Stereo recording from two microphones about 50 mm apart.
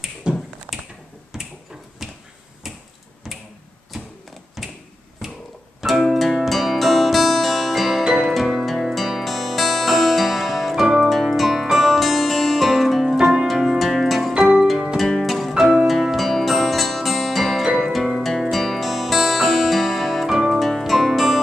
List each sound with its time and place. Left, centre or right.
0.3 s finger snapping: centre
1.3 s finger snapping: centre
4.6 s a sound: centre
5.8 s music: centre